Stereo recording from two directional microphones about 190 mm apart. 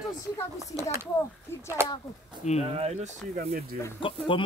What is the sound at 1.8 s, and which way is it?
Speech, 15° right (ahead or behind).